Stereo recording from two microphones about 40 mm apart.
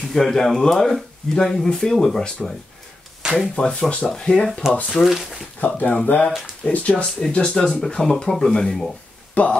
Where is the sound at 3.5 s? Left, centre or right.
Left.